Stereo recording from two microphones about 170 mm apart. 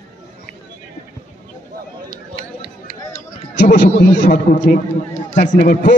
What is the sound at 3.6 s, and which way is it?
A man's voice, 50° left (ahead or behind).